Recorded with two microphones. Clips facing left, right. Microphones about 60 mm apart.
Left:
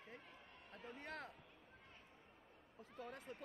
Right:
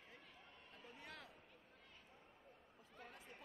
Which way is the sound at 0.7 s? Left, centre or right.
Left.